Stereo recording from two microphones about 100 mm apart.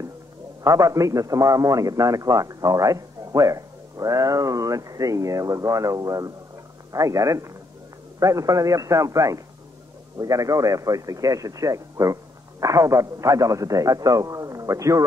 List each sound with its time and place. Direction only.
0.7 s a man's voice: 35° right (ahead or behind)